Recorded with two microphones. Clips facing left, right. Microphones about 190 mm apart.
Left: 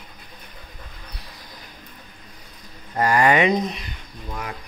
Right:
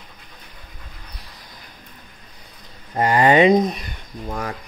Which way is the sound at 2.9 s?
25° right (ahead or behind).